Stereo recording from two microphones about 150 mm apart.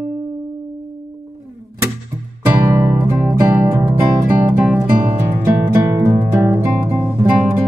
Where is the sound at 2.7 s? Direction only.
20° right (ahead or behind).